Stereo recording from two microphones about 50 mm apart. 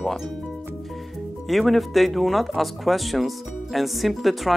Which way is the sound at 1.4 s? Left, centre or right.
Centre.